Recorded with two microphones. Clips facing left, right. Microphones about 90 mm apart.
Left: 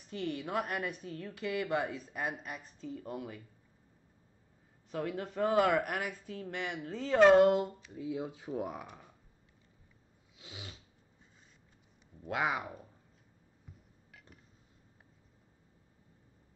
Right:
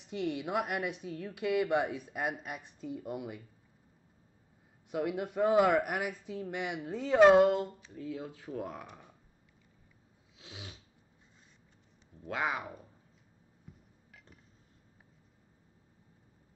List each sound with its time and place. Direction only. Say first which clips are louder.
0.1 s speech: right 2 dB; 15° right (ahead or behind)
4.9 s speech: right 3 dB; 10° right (ahead or behind)
7.9 s speech: left 2 dB; 15° left (ahead or behind)
8.5 s speech: left 1 dB; 5° left (ahead or behind)
10.3 s cat: even; centre (ahead or behind)
12.2 s speech: left 1 dB; 5° left (ahead or behind)
14.1 s a sound: left 1 dB; centre (ahead or behind)